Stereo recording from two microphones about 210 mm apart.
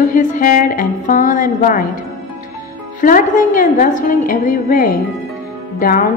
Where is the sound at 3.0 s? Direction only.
40° left (ahead or behind).